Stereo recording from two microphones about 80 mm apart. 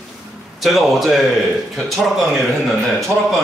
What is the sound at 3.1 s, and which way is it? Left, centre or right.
Speech, right.